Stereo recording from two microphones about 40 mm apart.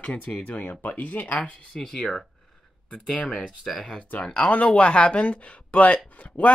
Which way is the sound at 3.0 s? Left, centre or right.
Left.